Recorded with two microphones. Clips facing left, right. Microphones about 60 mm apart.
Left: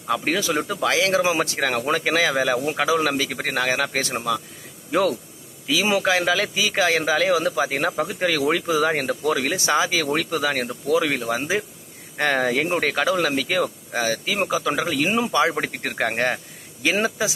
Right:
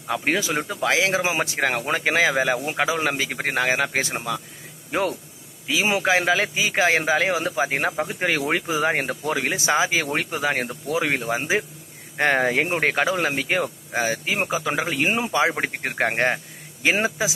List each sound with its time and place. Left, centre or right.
0.1 s a man's voice: right
4.1 s speech: centre
5.7 s a man's voice: right